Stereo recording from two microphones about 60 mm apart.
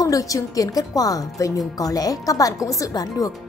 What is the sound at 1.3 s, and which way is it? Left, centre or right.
A woman's voice, left.